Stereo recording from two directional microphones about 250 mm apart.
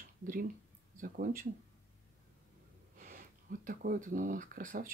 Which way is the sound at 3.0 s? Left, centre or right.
Right.